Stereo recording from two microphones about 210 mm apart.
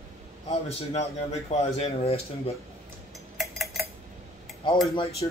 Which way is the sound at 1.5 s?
30° left (ahead or behind).